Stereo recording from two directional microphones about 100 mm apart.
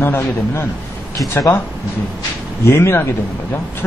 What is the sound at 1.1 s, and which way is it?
Speech, 35° left (ahead or behind).